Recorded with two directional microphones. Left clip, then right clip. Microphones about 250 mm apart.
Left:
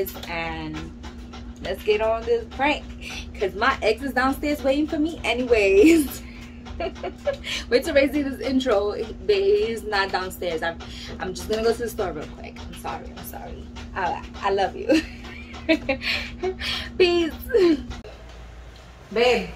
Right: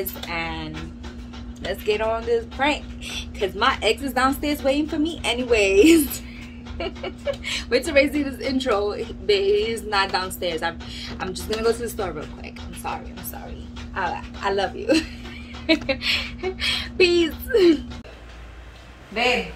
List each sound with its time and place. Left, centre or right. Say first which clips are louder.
0.3 s music: right 1 dB; centre
1.7 s a woman's voice: left 1 dB; centre
13.9 s a woman's voice: even; centre